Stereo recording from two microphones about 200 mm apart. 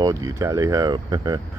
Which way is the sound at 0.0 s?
15° right (ahead or behind).